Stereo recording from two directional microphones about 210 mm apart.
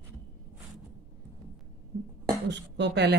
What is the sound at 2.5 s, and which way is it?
Speech, 55° right (ahead or behind).